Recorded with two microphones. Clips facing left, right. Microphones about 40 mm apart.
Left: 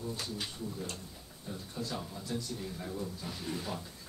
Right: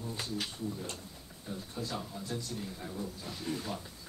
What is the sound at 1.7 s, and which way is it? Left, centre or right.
Speech, centre.